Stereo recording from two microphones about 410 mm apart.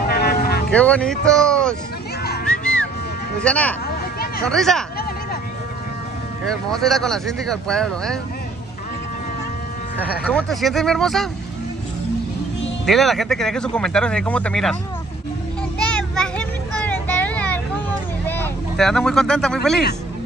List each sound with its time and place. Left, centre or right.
0.1 s music: left
0.7 s speech: centre
2.6 s music: centre
3.4 s speech: centre
3.9 s hubbub: left
4.5 s speech: centre
6.7 s speech: centre
10.2 s speech: centre
12.8 s speech: centre
15.8 s vehicle: centre
18.2 s speech: centre